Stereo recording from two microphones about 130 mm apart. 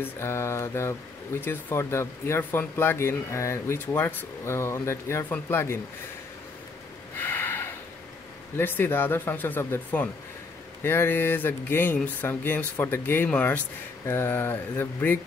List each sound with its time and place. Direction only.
0.0 s speech: 20° left (ahead or behind)
7.2 s snort: 15° left (ahead or behind)
8.5 s speech: 15° left (ahead or behind)